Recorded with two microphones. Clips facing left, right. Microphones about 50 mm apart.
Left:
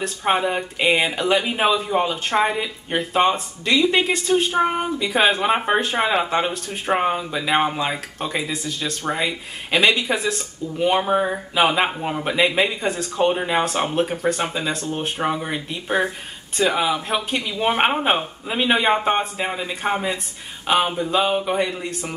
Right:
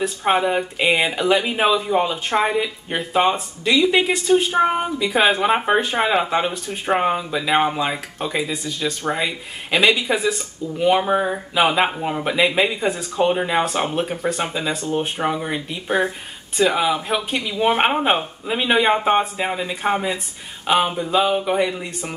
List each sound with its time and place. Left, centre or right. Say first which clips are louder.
0.0 s speech: right 2 dB; centre